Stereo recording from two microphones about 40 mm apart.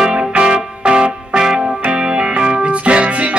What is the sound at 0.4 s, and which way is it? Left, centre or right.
Music, right.